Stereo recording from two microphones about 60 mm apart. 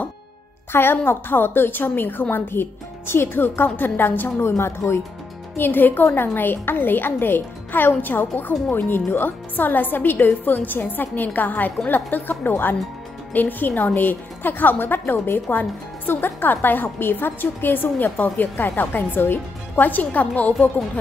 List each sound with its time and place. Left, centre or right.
0.7 s speech: left
5.6 s speech: left